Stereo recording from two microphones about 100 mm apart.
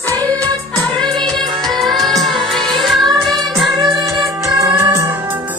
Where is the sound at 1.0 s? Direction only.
50° right (ahead or behind).